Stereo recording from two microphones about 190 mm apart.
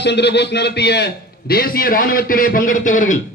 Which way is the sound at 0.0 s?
65° left (ahead or behind).